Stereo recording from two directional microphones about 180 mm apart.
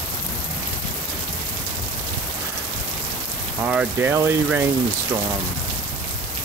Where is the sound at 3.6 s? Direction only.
10° right (ahead or behind).